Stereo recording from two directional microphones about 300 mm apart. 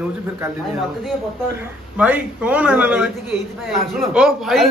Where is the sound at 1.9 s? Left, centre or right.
Centre.